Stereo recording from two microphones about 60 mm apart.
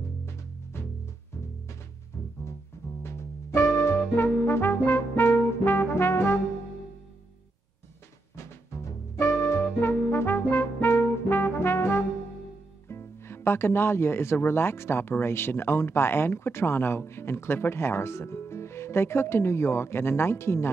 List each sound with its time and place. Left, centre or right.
0.2 s music: left
3.0 s music: left
8.4 s music: left
12.8 s speech: left